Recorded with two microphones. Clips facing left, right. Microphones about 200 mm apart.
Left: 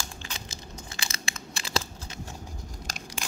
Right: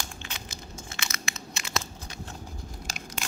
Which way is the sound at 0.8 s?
35° left (ahead or behind).